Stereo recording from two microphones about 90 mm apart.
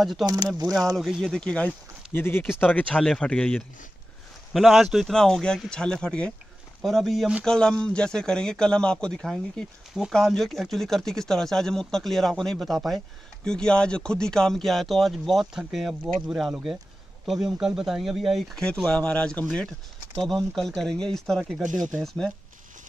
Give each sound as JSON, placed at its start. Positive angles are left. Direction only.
{"t": 0.0, "sound": "speech", "side_deg": 0}
{"t": 2.1, "sound": "speech", "side_deg": 25}
{"t": 2.7, "sound": "speech", "side_deg": 15}
{"t": 4.6, "sound": "speech", "side_deg": 0}
{"t": 18.9, "sound": "speech", "side_deg": 10}